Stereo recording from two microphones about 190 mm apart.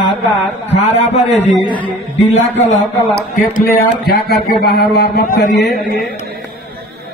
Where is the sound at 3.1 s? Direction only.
55° left (ahead or behind).